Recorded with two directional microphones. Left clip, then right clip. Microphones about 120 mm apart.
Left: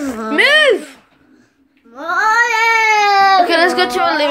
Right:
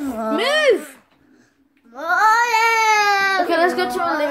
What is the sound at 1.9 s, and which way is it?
Child singing, 25° right (ahead or behind).